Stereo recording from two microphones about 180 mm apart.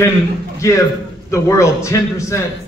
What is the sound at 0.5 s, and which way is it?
A man's voice, 15° left (ahead or behind).